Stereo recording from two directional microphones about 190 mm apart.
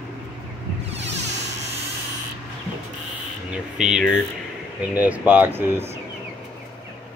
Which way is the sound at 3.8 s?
5° right (ahead or behind).